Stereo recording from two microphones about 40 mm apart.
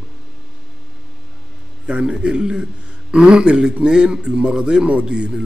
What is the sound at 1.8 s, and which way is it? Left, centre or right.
A man's voice, right.